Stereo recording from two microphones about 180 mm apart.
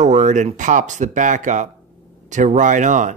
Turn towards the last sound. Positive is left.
turn(degrees=-45)  # may be behind; listen again after turning